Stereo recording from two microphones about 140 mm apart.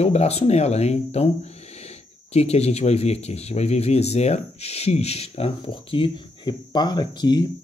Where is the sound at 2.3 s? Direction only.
50° left (ahead or behind); by 7.5 s 30° left (ahead or behind).